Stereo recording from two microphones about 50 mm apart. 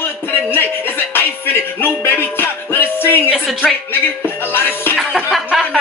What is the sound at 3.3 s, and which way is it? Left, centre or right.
Speech, right.